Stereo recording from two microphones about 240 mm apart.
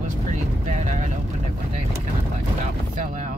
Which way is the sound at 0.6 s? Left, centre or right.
Right.